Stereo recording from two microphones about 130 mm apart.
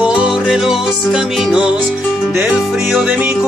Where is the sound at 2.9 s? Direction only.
10° right (ahead or behind).